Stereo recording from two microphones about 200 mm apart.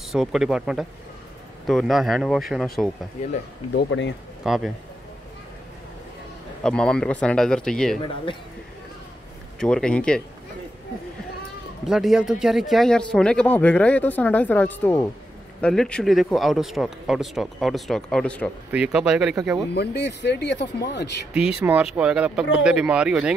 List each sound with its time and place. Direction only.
0.1 s speech: centre (ahead or behind)
3.7 s speech: 65° left (ahead or behind)
4.4 s a man's voice: centre (ahead or behind)
6.6 s speech: 5° left (ahead or behind)
9.6 s speech: 5° left (ahead or behind)
11.8 s speech: centre (ahead or behind)
18.7 s speech: 5° right (ahead or behind)
19.7 s speech: 55° left (ahead or behind)
21.3 s speech: 5° right (ahead or behind)